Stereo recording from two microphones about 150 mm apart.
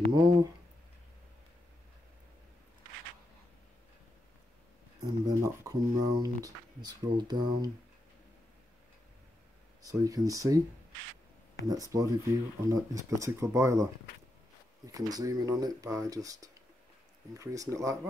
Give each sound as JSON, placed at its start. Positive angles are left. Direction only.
{"t": 0.1, "sound": "speech", "side_deg": -25}
{"t": 5.0, "sound": "speech", "side_deg": -25}
{"t": 9.8, "sound": "speech", "side_deg": -25}
{"t": 11.6, "sound": "speech", "side_deg": -25}
{"t": 14.9, "sound": "speech", "side_deg": -25}